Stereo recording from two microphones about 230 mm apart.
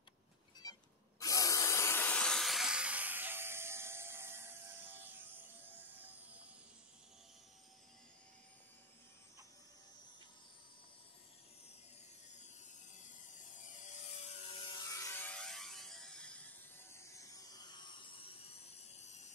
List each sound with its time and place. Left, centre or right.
1.2 s a sound: centre
5.7 s music: centre
13.8 s mechanisms: left